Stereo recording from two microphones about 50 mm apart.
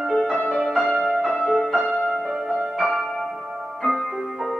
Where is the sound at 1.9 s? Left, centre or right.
Left.